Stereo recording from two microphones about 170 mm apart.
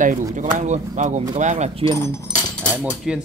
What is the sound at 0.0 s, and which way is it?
Speech, 50° right (ahead or behind).